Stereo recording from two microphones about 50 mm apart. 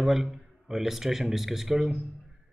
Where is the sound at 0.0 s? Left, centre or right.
Centre.